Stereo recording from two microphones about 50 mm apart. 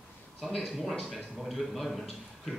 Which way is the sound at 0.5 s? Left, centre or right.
Centre.